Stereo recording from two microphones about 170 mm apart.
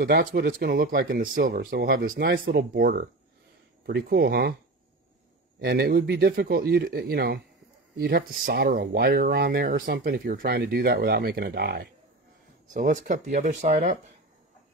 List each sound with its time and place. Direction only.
0.0 s speech: 70° right (ahead or behind)
1.2 s speech: 55° right (ahead or behind)
5.6 s speech: 70° right (ahead or behind)
12.7 s speech: 50° right (ahead or behind)